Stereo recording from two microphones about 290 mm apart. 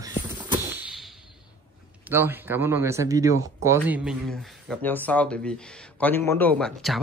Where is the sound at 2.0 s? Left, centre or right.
Centre.